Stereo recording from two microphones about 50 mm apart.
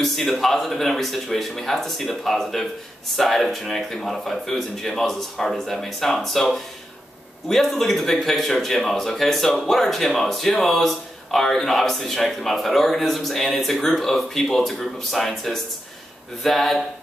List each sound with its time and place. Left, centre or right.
0.0 s speech: centre